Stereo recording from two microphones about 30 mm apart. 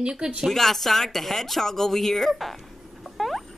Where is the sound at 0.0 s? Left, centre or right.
Right.